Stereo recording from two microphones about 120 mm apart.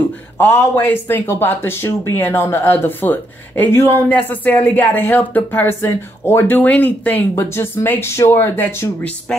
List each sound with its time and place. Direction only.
0.4 s speech: 20° left (ahead or behind)